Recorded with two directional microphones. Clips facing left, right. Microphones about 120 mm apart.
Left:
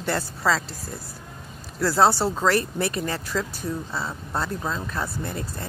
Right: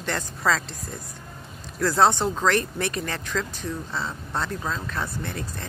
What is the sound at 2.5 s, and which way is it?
Speech, 35° left (ahead or behind).